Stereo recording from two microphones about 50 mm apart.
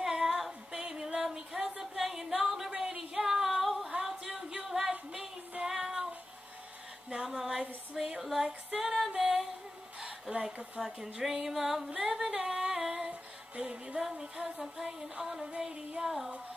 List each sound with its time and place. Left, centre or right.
0.0 s female singing: centre
2.4 s a sound: centre
2.7 s music: right
3.2 s music: centre
7.2 s music: centre
8.2 s female singing: centre
9.1 s singing: centre
10.4 s a sound: centre
13.6 s music: right
13.9 s a sound: centre